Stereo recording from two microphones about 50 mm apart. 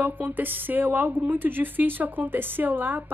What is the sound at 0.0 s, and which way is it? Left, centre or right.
A woman's voice, right.